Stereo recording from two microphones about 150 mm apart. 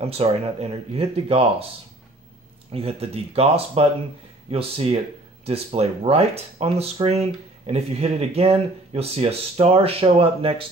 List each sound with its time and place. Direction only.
0.0 s speech: 40° right (ahead or behind)
2.7 s speech: 40° right (ahead or behind)